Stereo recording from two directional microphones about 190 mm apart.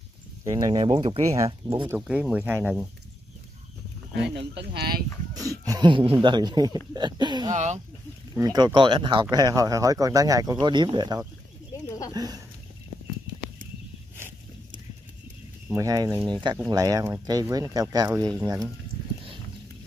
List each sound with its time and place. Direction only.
0.4 s speech: 20° right (ahead or behind)
2.0 s speech: 5° right (ahead or behind)
4.7 s speech: 55° right (ahead or behind)
5.3 s speech: 20° right (ahead or behind)
7.5 s speech: 35° right (ahead or behind)
8.4 s speech: 20° right (ahead or behind)
15.7 s speech: 15° right (ahead or behind)